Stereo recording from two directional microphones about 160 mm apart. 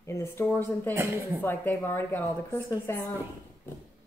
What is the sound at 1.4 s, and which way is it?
A woman's voice, 10° left (ahead or behind).